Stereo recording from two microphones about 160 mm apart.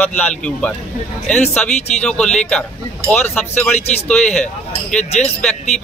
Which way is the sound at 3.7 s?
40° left (ahead or behind).